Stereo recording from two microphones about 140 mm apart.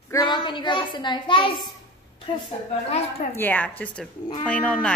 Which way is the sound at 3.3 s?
15° left (ahead or behind).